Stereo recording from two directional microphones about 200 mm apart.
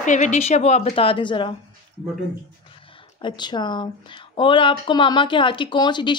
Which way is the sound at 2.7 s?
25° left (ahead or behind).